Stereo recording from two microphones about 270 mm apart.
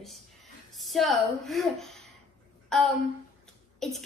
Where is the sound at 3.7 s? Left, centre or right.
Centre.